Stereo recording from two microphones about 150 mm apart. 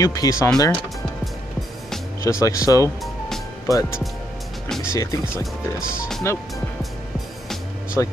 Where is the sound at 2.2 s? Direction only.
20° left (ahead or behind).